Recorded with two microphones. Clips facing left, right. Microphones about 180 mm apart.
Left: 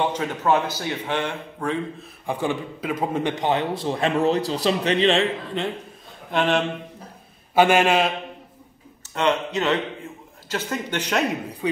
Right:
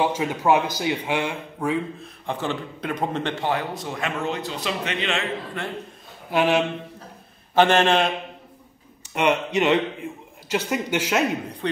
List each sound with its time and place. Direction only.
0.0 s speech: 10° right (ahead or behind)
2.2 s a man's voice: 10° left (ahead or behind); by 5.6 s 30° left (ahead or behind)
6.3 s speech: 5° right (ahead or behind)
7.5 s a man's voice: 10° left (ahead or behind)
9.0 s speech: 15° right (ahead or behind)
11.6 s a man's voice: 5° left (ahead or behind)